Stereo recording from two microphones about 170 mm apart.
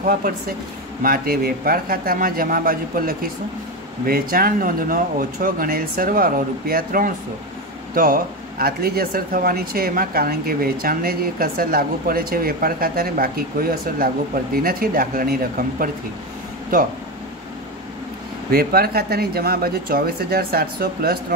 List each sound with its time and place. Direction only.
0.0 s speech: 55° right (ahead or behind)
18.5 s speech: 65° right (ahead or behind)